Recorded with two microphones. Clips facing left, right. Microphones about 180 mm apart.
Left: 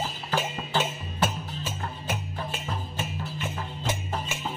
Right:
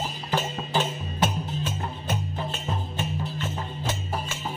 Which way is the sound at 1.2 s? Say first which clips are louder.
Right 2 dB; 10° left (ahead or behind).